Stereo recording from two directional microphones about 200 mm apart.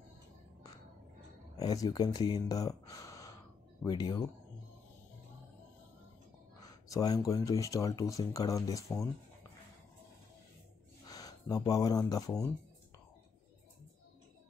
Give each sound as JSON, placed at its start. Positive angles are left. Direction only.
{"t": 1.6, "sound": "speech", "side_deg": 20}
{"t": 6.6, "sound": "speech", "side_deg": 15}
{"t": 11.1, "sound": "speech", "side_deg": 20}